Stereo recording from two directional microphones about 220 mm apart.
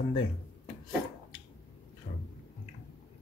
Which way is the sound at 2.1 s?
30° left (ahead or behind).